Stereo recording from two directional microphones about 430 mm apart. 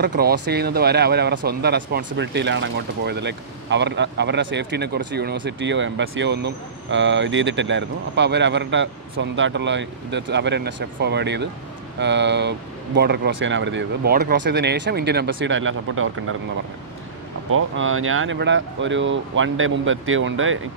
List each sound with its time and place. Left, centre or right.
0.0 s speech: right
17.5 s speech: right